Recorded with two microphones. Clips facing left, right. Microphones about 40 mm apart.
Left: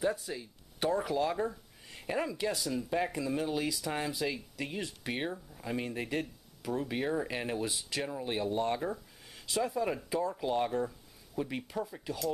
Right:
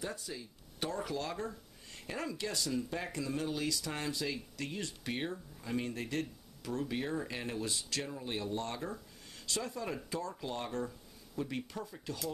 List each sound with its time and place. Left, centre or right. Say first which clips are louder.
0.0 s speech: left 8 dB; centre